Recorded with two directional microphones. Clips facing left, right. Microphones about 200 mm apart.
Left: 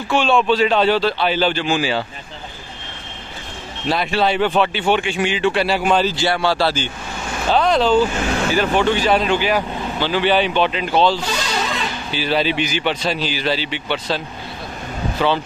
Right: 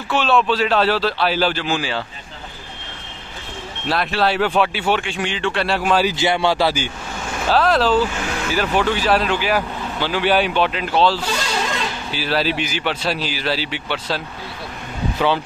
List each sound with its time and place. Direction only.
0.1 s speech: centre (ahead or behind)
3.9 s speech: centre (ahead or behind)
6.0 s speech: 15° right (ahead or behind)